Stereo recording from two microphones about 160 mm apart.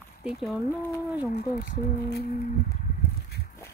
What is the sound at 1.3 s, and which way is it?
Speech, 90° left.